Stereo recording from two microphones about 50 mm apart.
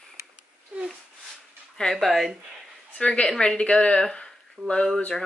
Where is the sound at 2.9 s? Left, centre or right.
Left.